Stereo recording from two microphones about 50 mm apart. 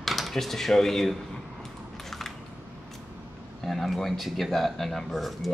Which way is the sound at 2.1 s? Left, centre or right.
Centre.